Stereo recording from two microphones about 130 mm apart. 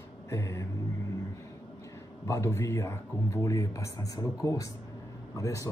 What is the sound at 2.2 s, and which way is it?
A man's voice, 20° left (ahead or behind).